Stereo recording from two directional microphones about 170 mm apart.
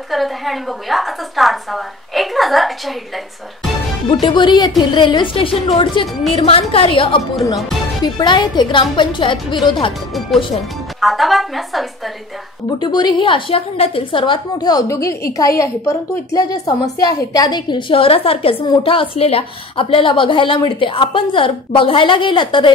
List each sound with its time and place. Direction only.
0.1 s a woman's voice: centre (ahead or behind)
4.1 s a woman's voice: 25° left (ahead or behind)
11.0 s a woman's voice: centre (ahead or behind)
12.7 s a woman's voice: 25° left (ahead or behind)